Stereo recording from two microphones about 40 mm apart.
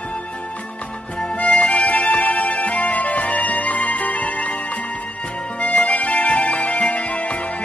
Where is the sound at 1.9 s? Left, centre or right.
Left.